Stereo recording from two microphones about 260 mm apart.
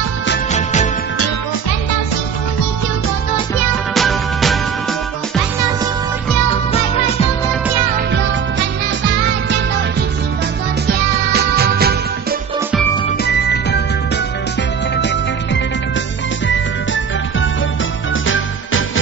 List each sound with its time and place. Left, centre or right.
0.5 s music: left
3.9 s music: centre
6.7 s music: left
10.9 s music: right
13.2 s music: left
15.0 s music: left